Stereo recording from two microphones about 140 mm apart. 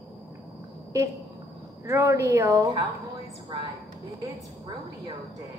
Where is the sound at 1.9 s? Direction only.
20° right (ahead or behind).